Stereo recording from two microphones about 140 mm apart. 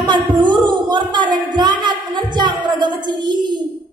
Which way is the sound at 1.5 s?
35° right (ahead or behind).